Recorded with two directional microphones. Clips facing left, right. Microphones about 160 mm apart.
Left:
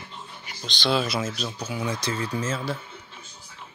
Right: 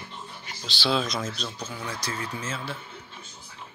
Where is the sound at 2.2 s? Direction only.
40° left (ahead or behind).